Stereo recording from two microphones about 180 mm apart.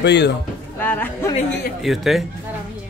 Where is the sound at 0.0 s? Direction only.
70° left (ahead or behind).